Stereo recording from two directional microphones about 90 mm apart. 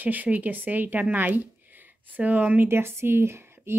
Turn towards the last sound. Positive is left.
turn(degrees=-30)  # may be behind; listen again after turning